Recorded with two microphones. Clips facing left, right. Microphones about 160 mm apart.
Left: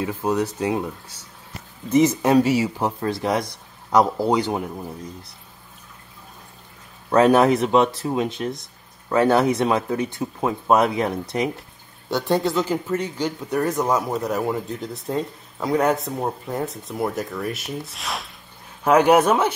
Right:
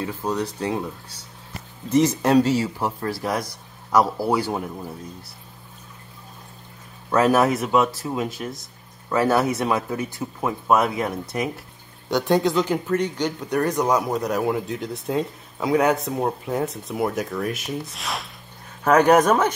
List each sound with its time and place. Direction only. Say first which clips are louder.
0.0 s speech: left 3 dB; 10° left (ahead or behind)
1.9 s speech: left 1 dB; 10° left (ahead or behind)
7.1 s speech: left 3 dB; 25° left (ahead or behind)
12.1 s speech: right 1 dB; centre (ahead or behind)